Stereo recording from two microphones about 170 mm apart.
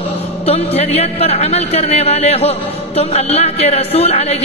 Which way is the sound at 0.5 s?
35° left (ahead or behind).